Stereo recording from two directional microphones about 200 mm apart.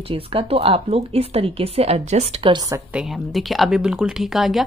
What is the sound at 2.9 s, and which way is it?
Speech, centre (ahead or behind).